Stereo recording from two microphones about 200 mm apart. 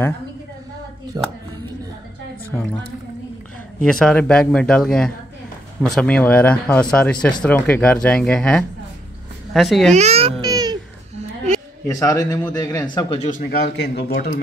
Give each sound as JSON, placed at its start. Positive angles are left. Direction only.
{"t": 1.1, "sound": "speech", "side_deg": -20}
{"t": 3.8, "sound": "speech", "side_deg": 5}
{"t": 9.9, "sound": "a child's voice", "side_deg": -30}
{"t": 10.4, "sound": "babbling", "side_deg": -20}
{"t": 11.1, "sound": "a sound", "side_deg": -35}
{"t": 12.0, "sound": "speech", "side_deg": 15}
{"t": 13.4, "sound": "a man's voice", "side_deg": 55}